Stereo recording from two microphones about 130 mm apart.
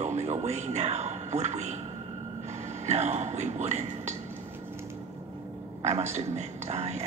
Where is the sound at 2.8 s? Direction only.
60° right (ahead or behind).